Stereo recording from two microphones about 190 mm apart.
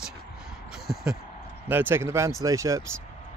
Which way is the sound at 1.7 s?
10° right (ahead or behind).